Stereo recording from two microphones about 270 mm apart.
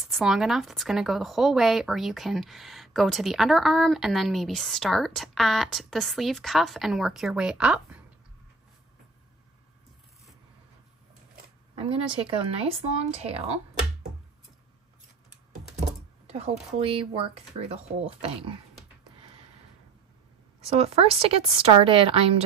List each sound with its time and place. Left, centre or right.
0.1 s speech: centre
11.7 s speech: right
16.3 s a sound: right
16.7 s speech: centre
20.6 s speech: right